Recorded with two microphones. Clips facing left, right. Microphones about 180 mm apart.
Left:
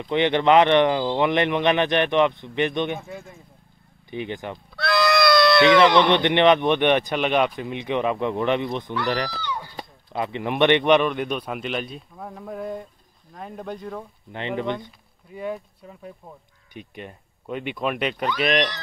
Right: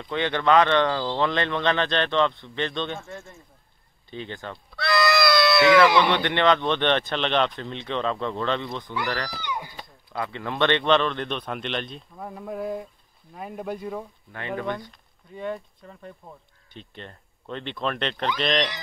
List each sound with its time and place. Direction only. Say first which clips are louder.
0.0 s speech: left 5 dB; 20° left (ahead or behind)
4.7 s goat: left 2 dB; centre (ahead or behind)
5.9 s speech: left 3 dB; 10° right (ahead or behind)
6.1 s speech: left 4 dB; 20° left (ahead or behind)
9.3 s a sound: left 1 dB; 15° right (ahead or behind)
10.1 s speech: left 4 dB; 20° left (ahead or behind); by 14.0 s 5° right (ahead or behind)
14.3 s speech: left 3 dB; 20° left (ahead or behind)
14.9 s speech: left 2 dB; 5° left (ahead or behind)